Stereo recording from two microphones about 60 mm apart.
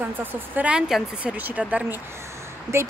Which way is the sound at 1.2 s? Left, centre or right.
Right.